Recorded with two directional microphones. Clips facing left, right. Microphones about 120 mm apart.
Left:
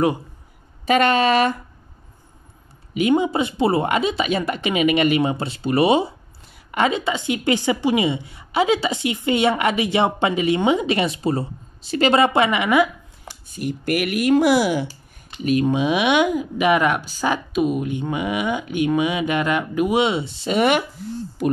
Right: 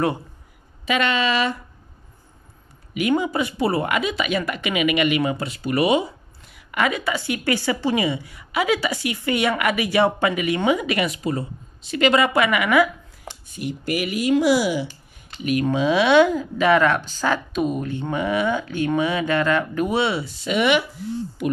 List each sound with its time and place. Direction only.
0.8 s a woman's voice: 45° left (ahead or behind)
2.9 s speech: 25° left (ahead or behind)
13.6 s speech: 50° left (ahead or behind)
15.6 s speech: 20° left (ahead or behind); by 21.5 s 40° left (ahead or behind)